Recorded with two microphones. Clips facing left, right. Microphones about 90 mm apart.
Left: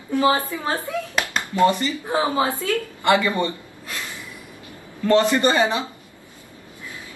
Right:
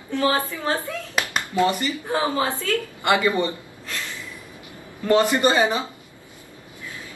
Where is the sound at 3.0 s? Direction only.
20° right (ahead or behind).